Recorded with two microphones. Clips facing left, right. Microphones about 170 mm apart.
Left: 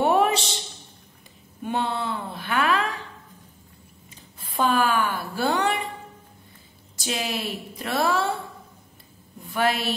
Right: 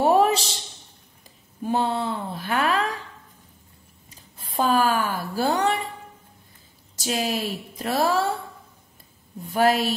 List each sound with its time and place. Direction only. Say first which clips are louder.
0.0 s a sound: right 2 dB; 35° right (ahead or behind)
1.6 s a woman's voice: right 3 dB; 35° right (ahead or behind)
4.4 s speech: right 1 dB; 40° right (ahead or behind)
7.0 s a woman's voice: right 3 dB; 40° right (ahead or behind)
9.4 s a woman's voice: right 4 dB; 40° right (ahead or behind)